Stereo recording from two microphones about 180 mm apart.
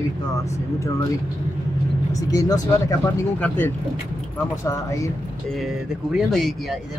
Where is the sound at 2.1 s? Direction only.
20° left (ahead or behind).